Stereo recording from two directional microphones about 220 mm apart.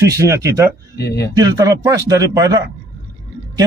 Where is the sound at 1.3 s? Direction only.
15° right (ahead or behind).